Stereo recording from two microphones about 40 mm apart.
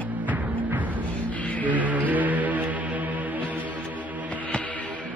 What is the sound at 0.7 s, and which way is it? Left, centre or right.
Music, right.